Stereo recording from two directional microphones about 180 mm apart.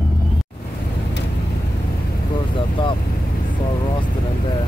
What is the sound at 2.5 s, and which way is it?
Speech, 25° left (ahead or behind).